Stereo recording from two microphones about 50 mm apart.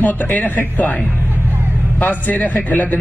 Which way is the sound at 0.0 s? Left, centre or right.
Left.